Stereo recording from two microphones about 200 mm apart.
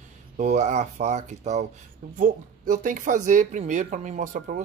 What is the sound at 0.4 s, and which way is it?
Speech, 35° right (ahead or behind).